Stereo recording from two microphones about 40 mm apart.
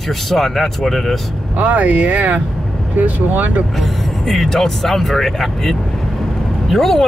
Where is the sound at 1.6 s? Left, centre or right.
Right.